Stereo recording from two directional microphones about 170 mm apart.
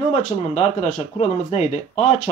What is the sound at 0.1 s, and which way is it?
Speech, 40° left (ahead or behind).